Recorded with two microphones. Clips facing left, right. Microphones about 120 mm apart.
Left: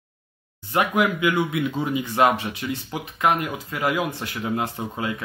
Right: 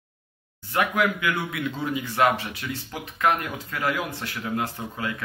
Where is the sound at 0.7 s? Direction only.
20° left (ahead or behind).